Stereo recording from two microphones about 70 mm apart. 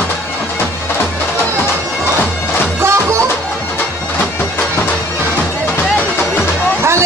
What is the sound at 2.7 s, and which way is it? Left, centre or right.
Music, right.